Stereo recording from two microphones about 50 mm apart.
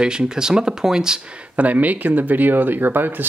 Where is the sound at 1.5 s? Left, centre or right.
Right.